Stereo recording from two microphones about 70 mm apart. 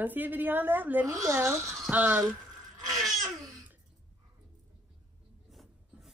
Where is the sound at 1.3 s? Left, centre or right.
Right.